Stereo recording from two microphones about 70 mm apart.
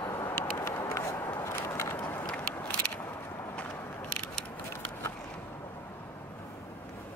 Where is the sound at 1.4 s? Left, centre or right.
Left.